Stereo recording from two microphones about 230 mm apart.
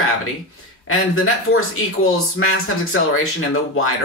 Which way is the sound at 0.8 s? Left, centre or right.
Left.